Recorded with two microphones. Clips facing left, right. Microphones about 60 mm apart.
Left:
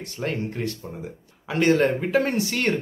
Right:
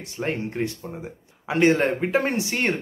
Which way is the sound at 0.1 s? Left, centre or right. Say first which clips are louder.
Right 1 dB; right.